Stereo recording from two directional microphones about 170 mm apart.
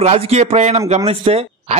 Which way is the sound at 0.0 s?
40° right (ahead or behind).